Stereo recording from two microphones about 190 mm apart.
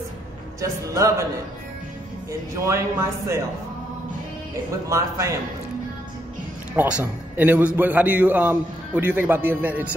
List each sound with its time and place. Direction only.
0.6 s a man's voice: 15° right (ahead or behind)
2.5 s a man's voice: 15° right (ahead or behind)
4.8 s a man's voice: 15° right (ahead or behind)
6.7 s a man's voice: 10° right (ahead or behind)